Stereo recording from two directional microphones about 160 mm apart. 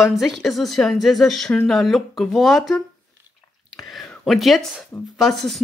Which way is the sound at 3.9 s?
Centre (ahead or behind).